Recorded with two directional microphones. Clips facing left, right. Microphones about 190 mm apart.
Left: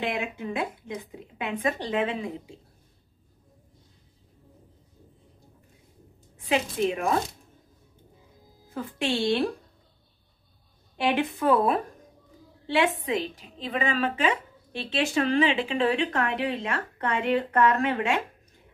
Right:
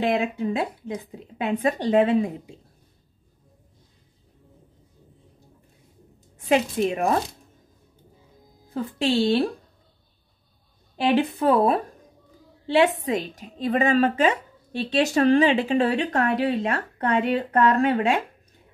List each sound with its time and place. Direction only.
0.0 s a woman's voice: 40° right (ahead or behind)
6.3 s a woman's voice: 45° right (ahead or behind)
8.6 s a woman's voice: 35° right (ahead or behind)
11.1 s a woman's voice: 35° right (ahead or behind)